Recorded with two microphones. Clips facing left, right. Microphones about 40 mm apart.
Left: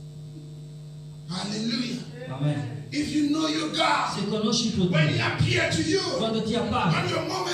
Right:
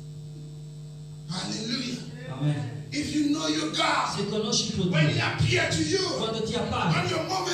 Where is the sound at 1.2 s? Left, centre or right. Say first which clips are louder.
Left 3 dB; centre.